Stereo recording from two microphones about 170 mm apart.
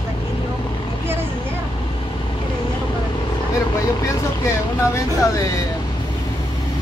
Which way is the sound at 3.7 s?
20° left (ahead or behind).